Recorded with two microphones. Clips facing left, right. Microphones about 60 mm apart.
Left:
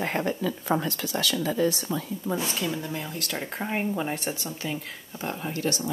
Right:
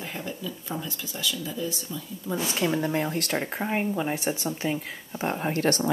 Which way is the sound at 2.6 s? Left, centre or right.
Right.